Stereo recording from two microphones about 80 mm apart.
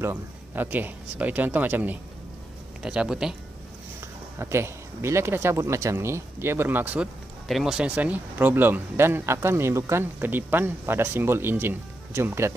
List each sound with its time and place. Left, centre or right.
0.0 s speech: right
2.8 s speech: centre
4.4 s speech: right
7.4 s speech: centre; by 12.5 s right